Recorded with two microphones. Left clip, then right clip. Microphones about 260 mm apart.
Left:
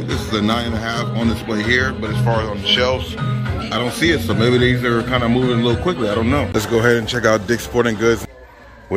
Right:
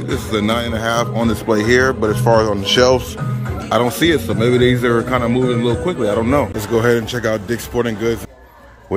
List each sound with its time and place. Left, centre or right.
0.3 s a man's voice: centre
2.2 s speech: right
3.7 s a man's voice: centre